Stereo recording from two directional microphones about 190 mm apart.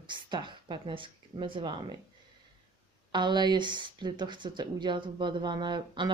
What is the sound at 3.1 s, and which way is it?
Speech, 25° right (ahead or behind).